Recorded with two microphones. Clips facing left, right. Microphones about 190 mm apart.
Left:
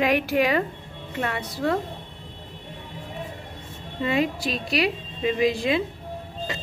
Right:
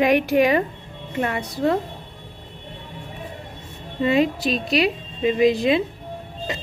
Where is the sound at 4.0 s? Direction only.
25° right (ahead or behind).